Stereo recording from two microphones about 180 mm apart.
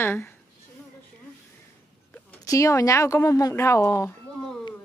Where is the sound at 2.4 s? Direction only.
15° left (ahead or behind).